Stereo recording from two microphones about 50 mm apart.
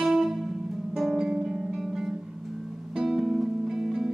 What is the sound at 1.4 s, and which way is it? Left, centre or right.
Music, centre.